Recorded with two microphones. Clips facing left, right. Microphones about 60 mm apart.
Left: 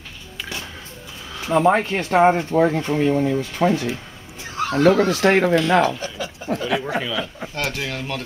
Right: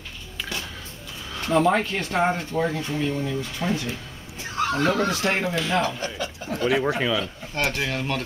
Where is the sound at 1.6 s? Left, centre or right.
Left.